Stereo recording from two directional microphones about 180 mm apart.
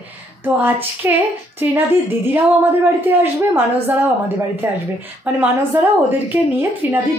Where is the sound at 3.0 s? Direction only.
10° right (ahead or behind).